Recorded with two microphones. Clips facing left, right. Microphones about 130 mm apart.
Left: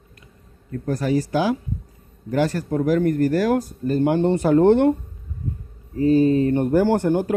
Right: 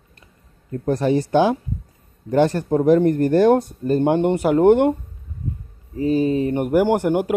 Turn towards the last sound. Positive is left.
turn(degrees=-15)  # may be behind; listen again after turning